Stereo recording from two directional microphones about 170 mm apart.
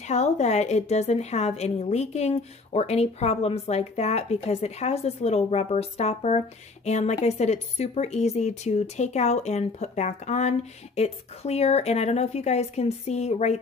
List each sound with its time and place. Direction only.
0.1 s speech: 40° left (ahead or behind)